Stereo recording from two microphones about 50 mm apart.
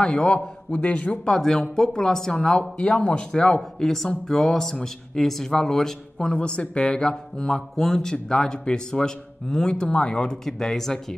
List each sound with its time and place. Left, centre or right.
0.0 s a man's voice: centre
1.2 s speech: centre
6.3 s speech: left
10.4 s speech: centre